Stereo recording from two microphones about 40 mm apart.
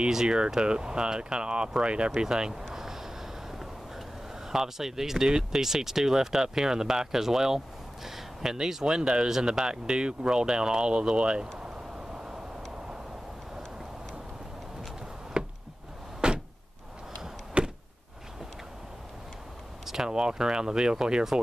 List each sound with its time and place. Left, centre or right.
0.1 s speech: centre
2.7 s a sound: centre
4.5 s speech: centre
9.7 s speech: right
15.3 s a sound: right
16.2 s door: right
17.6 s power windows: right
19.9 s speech: centre